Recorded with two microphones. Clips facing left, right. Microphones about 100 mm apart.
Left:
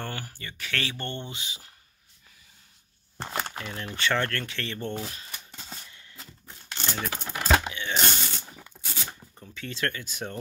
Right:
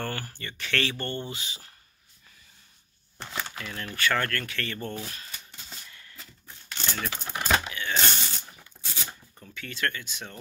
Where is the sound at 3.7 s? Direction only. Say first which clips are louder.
Even; 20° left (ahead or behind).